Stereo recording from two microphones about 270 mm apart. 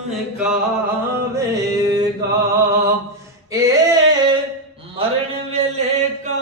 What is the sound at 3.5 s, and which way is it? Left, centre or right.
Singing, centre.